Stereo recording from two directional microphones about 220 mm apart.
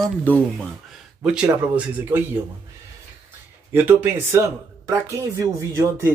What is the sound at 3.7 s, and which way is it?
Speech, 10° right (ahead or behind).